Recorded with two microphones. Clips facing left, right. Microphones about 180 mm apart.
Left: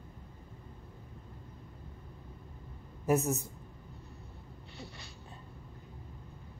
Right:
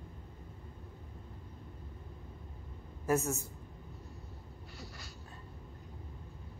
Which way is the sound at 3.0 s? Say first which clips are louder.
Left 3 dB; 15° left (ahead or behind).